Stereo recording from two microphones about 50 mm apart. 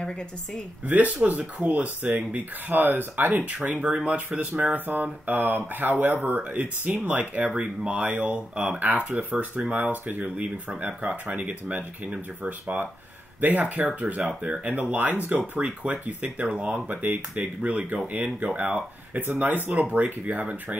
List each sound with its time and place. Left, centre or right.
0.8 s speech: right
3.4 s speech: right
4.6 s speech: right
16.7 s speech: right
19.1 s speech: right